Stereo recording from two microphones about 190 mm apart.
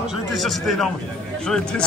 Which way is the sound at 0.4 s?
Centre (ahead or behind).